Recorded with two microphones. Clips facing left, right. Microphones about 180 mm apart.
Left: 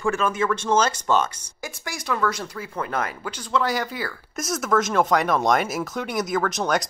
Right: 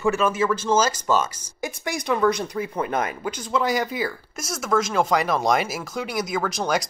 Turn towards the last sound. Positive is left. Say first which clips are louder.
# left 1 dB
turn(degrees=0)  # may be behind; listen again after turning